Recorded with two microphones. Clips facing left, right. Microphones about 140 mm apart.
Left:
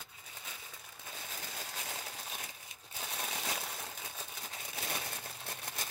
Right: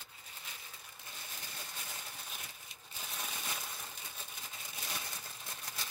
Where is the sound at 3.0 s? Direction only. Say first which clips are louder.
Left 4 dB; 70° left (ahead or behind).